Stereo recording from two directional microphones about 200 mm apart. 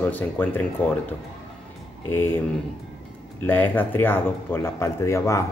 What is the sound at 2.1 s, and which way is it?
Speech, 10° left (ahead or behind).